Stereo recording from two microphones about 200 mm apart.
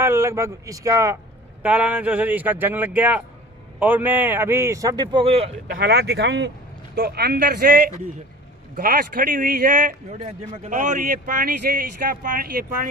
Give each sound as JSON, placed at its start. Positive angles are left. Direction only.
{"t": 0.0, "sound": "a man's voice", "side_deg": -10}
{"t": 5.7, "sound": "speech", "side_deg": -55}